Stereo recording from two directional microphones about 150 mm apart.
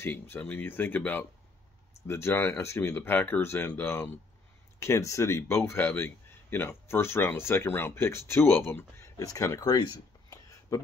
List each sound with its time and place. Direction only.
0.0 s speech: 15° left (ahead or behind)